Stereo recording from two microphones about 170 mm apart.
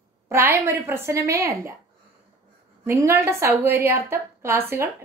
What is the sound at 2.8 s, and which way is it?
A woman's voice, 15° right (ahead or behind).